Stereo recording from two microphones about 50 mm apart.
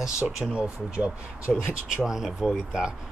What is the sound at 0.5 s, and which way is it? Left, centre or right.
Speech, right.